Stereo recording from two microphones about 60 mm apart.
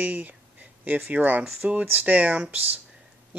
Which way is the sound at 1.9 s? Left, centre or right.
Right.